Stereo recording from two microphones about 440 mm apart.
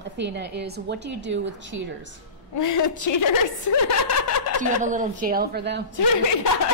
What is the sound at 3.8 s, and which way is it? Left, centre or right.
Snicker, left.